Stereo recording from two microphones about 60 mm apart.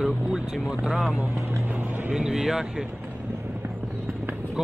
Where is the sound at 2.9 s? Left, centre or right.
Right.